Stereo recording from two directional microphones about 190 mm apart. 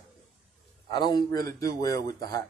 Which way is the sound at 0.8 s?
20° left (ahead or behind).